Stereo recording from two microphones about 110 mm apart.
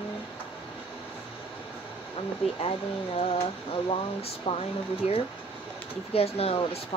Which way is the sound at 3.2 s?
60° left (ahead or behind).